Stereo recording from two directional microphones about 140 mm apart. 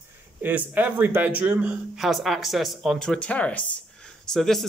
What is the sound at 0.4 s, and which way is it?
Speech, 10° right (ahead or behind).